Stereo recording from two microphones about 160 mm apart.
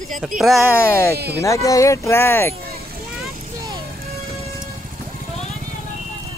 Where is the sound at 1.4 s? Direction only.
20° left (ahead or behind).